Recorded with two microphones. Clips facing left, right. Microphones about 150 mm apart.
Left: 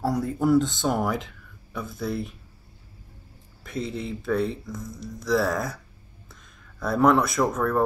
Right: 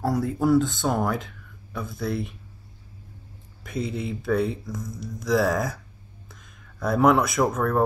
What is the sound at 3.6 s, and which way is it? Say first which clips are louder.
Speech: right 2 dB; 5° right (ahead or behind).